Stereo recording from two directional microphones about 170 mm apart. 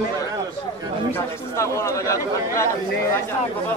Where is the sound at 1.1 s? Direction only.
15° left (ahead or behind).